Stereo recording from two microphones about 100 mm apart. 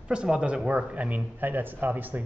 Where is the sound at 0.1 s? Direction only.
10° right (ahead or behind).